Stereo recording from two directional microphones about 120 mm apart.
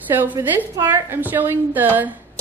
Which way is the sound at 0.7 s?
20° right (ahead or behind).